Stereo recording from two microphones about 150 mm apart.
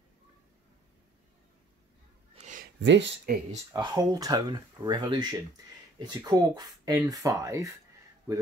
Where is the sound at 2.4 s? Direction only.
60° right (ahead or behind).